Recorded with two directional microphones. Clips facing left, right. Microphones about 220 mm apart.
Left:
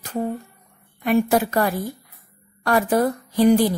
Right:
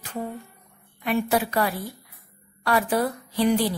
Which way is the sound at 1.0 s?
45° left (ahead or behind).